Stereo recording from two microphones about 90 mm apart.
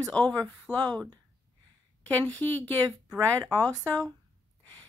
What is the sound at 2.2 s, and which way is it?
Speech, 15° left (ahead or behind).